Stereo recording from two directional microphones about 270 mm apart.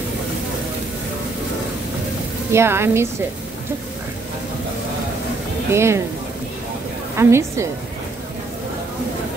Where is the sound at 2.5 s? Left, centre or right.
Centre.